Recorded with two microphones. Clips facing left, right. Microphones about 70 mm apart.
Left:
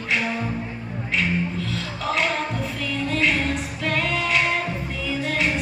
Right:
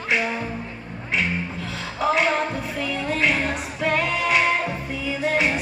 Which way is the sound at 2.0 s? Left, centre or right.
Centre.